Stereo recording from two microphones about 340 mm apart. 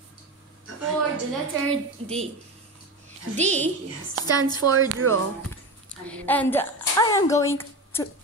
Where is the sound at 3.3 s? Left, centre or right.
Centre.